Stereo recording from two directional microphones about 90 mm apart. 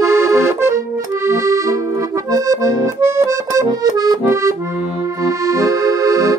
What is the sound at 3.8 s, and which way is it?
Accordion, 50° right (ahead or behind).